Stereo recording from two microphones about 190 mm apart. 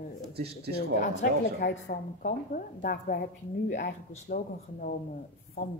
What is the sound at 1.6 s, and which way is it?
A woman's voice, 50° left (ahead or behind).